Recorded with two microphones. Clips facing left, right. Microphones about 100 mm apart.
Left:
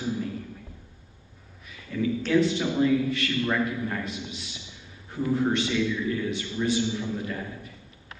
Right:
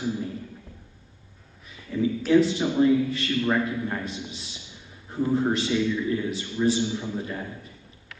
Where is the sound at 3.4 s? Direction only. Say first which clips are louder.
Right 3 dB; 20° right (ahead or behind).